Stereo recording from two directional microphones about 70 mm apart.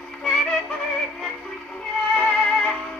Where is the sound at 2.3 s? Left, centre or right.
Centre.